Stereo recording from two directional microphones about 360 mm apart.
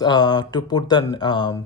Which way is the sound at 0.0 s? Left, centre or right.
Centre.